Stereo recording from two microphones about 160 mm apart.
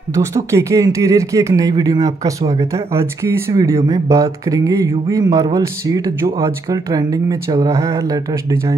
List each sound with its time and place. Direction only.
0.1 s speech: 20° right (ahead or behind)